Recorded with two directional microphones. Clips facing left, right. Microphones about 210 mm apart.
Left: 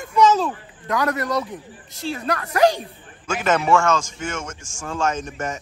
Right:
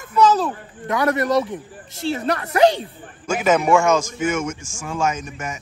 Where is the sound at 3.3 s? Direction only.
10° right (ahead or behind).